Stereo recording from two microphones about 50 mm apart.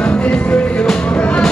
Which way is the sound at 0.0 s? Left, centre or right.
Left.